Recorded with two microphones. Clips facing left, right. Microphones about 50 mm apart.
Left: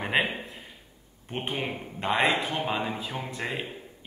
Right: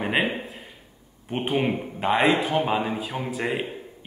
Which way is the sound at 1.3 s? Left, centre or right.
Centre.